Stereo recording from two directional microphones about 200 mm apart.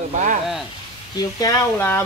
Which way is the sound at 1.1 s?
15° left (ahead or behind).